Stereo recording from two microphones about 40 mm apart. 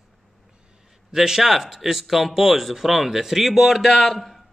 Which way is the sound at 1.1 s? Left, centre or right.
Centre.